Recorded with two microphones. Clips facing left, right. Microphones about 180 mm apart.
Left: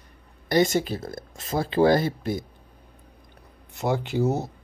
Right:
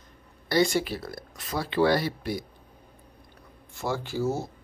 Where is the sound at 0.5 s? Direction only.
20° left (ahead or behind).